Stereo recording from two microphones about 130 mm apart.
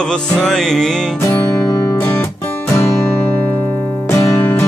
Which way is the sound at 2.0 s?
15° left (ahead or behind).